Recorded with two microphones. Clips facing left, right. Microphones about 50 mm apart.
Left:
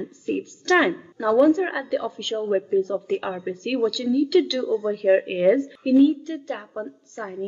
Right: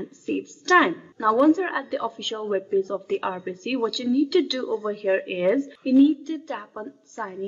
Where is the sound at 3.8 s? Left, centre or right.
Centre.